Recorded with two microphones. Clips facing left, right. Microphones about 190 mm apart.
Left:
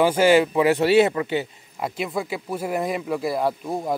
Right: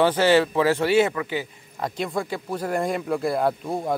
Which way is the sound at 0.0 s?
10° left (ahead or behind).